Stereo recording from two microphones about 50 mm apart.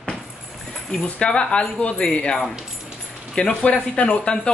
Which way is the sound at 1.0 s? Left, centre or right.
Centre.